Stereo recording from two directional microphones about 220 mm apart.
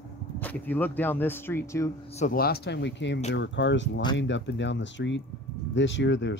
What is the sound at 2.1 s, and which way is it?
Speech, 35° left (ahead or behind).